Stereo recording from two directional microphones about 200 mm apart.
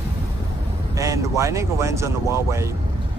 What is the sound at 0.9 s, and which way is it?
Speech, 15° right (ahead or behind).